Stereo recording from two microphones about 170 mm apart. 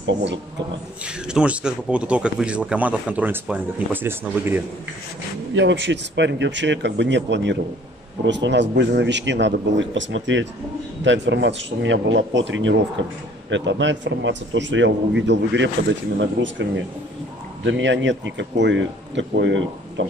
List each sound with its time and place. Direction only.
0.0 s a man's voice: 90° right
1.0 s speech: 5° right (ahead or behind)
5.5 s a man's voice: 90° right
17.6 s a man's voice: 90° right